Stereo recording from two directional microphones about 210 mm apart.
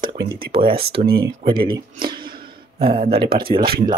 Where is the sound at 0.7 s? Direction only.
50° right (ahead or behind).